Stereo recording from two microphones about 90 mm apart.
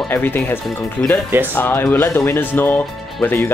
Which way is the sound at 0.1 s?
25° left (ahead or behind).